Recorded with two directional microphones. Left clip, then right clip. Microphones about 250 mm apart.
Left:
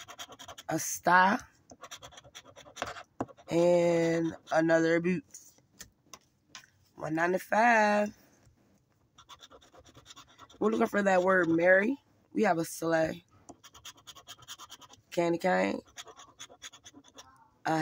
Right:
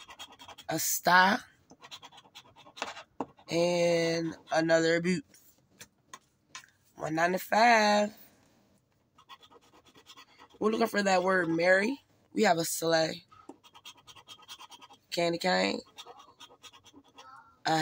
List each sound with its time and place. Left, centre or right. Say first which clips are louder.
0.7 s speech: right 1 dB; centre
3.6 s speech: left 2 dB; centre
7.0 s speech: right 1 dB; centre
10.6 s speech: even; centre
15.0 s speech: even; centre